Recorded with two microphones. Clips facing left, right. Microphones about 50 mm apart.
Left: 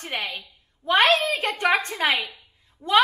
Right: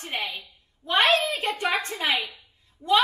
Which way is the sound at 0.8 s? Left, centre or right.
Left.